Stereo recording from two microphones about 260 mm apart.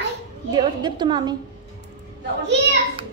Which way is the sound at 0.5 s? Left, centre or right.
Centre.